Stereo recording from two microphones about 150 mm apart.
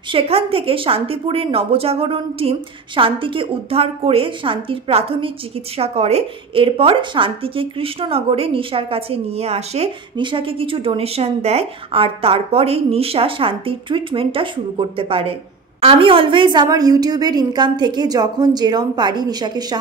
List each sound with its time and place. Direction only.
0.1 s a woman's voice: 40° right (ahead or behind)